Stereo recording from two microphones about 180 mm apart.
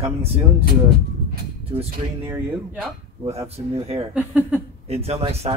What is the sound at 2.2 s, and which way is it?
Speech, 10° right (ahead or behind).